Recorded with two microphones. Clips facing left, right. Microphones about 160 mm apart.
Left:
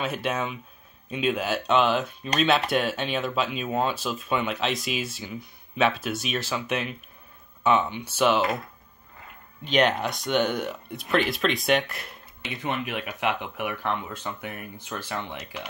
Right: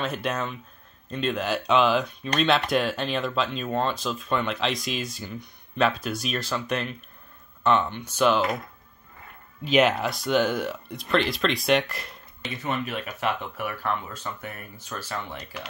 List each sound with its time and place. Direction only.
0.0 s speech: 5° left (ahead or behind)
9.7 s speech: 5° right (ahead or behind)
12.4 s speech: 15° left (ahead or behind)